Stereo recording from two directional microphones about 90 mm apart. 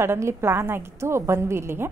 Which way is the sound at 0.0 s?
30° right (ahead or behind).